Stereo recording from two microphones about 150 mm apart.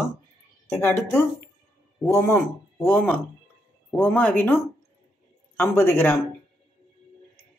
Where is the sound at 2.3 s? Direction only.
15° left (ahead or behind).